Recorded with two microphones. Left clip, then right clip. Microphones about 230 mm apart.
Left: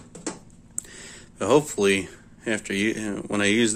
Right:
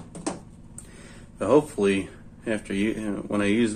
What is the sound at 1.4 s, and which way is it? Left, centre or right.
Speech, left.